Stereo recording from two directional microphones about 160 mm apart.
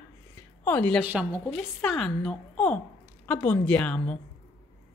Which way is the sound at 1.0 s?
10° right (ahead or behind).